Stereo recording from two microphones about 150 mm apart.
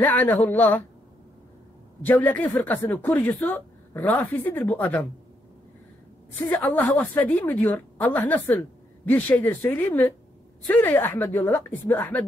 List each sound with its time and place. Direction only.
0.0 s a woman's voice: 10° left (ahead or behind)
2.0 s a woman's voice: 10° left (ahead or behind)
6.5 s a woman's voice: 10° left (ahead or behind)